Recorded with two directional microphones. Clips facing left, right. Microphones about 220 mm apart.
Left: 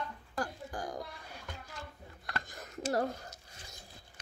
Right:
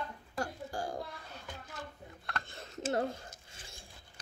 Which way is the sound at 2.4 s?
25° right (ahead or behind).